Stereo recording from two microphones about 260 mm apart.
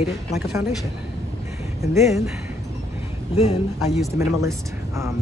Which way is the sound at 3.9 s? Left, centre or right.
Centre.